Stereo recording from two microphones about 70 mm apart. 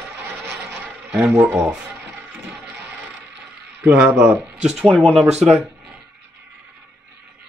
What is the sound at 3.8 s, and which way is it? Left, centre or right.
Speech, right.